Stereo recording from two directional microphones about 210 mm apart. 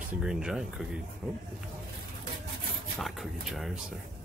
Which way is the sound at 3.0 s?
Centre (ahead or behind).